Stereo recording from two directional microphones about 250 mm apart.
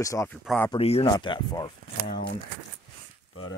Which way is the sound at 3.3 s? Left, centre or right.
Left.